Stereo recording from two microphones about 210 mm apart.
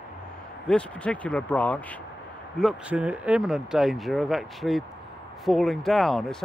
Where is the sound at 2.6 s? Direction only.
5° right (ahead or behind).